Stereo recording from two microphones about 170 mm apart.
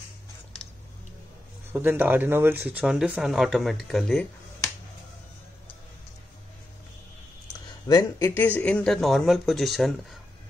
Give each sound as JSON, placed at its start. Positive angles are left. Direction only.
{"t": 1.7, "sound": "speech", "side_deg": -10}
{"t": 7.9, "sound": "speech", "side_deg": 20}
{"t": 8.4, "sound": "speech", "side_deg": 10}